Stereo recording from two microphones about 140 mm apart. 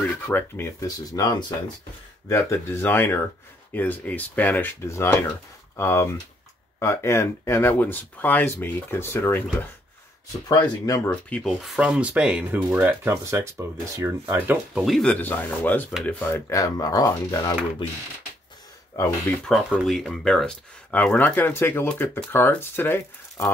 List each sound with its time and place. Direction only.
0.0 s speech: 15° left (ahead or behind)
11.1 s speech: 10° left (ahead or behind); by 15.0 s 10° right (ahead or behind)
15.0 s speech: 10° left (ahead or behind); by 17.6 s 25° left (ahead or behind)
18.9 s speech: 20° left (ahead or behind)
19.7 s speech: centre (ahead or behind); by 23.4 s 15° left (ahead or behind)